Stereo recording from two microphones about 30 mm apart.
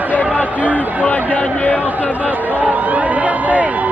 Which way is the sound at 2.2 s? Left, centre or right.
Right.